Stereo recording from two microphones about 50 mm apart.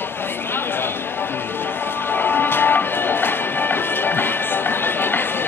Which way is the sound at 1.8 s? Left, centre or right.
Left.